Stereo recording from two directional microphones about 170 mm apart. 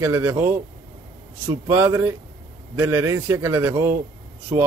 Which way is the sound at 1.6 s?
20° right (ahead or behind).